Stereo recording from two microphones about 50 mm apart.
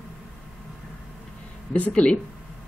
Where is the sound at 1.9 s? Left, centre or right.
Centre.